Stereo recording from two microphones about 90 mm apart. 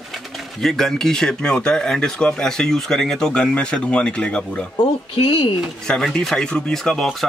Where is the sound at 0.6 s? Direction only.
5° left (ahead or behind).